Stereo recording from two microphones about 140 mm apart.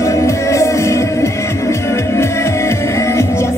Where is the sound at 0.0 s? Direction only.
20° left (ahead or behind).